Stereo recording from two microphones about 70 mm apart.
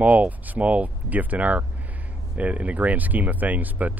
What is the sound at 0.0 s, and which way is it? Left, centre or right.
Speech, right.